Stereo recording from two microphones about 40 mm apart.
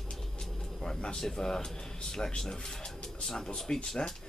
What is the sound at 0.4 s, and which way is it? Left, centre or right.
Vehicle, centre.